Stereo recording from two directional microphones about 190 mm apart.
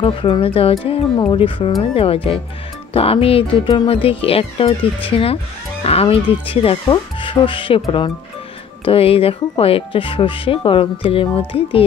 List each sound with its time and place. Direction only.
0.0 s speech: 30° left (ahead or behind)